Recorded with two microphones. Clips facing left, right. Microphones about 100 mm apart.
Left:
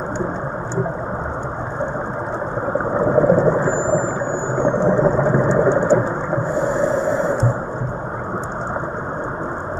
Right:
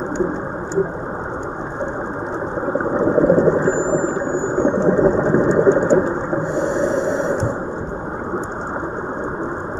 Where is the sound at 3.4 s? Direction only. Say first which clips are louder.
Right 1 dB; 20° right (ahead or behind).